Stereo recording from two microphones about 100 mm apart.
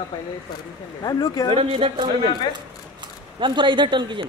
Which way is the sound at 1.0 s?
40° left (ahead or behind).